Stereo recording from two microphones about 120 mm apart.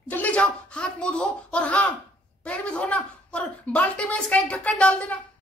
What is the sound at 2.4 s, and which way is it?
A woman's voice, 10° left (ahead or behind).